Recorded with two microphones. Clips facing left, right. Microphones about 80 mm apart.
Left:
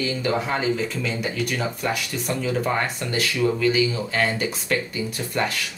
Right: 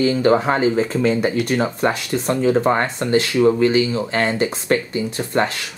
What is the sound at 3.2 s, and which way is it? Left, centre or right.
Speech, right.